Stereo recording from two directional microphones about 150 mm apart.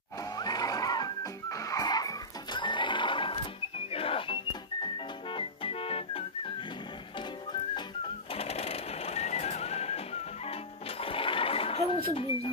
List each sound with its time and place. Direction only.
0.4 s music: 25° left (ahead or behind)
8.4 s a sound: 45° left (ahead or behind)
11.0 s sewing machine: 35° left (ahead or behind)